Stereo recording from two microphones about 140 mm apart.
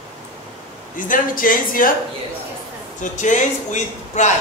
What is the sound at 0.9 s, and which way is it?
Speech, 75° left (ahead or behind).